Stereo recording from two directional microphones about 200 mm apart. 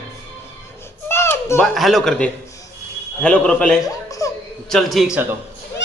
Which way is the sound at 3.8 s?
15° left (ahead or behind).